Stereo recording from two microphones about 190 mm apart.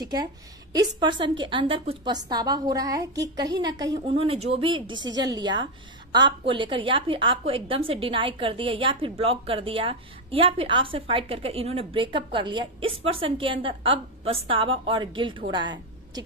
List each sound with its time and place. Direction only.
0.9 s a woman's voice: 25° right (ahead or behind)